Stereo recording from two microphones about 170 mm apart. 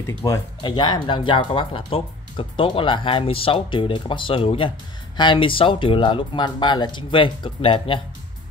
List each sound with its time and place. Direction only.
0.2 s speech: 25° left (ahead or behind)